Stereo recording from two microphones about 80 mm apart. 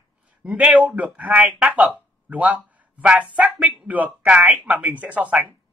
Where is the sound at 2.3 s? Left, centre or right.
Centre.